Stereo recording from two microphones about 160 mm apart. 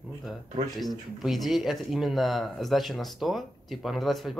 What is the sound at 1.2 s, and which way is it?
Speech, centre (ahead or behind).